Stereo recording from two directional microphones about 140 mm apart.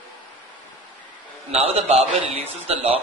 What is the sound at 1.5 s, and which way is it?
A man's voice, 45° right (ahead or behind).